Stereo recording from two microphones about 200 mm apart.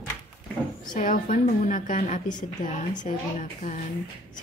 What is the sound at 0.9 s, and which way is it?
A woman's voice, 40° left (ahead or behind).